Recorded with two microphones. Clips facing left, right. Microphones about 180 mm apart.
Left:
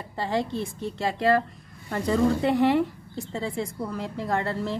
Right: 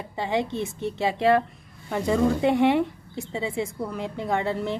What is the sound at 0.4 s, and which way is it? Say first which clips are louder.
Speech: right 1 dB; 25° right (ahead or behind).